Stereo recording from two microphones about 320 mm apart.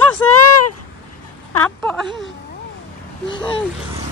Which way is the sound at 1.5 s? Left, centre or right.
Centre.